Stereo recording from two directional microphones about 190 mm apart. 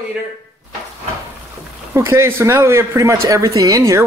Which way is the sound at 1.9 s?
15° right (ahead or behind).